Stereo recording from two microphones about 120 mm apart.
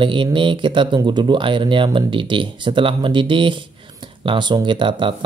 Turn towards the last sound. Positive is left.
turn(degrees=-40)  # may be behind; listen again after turning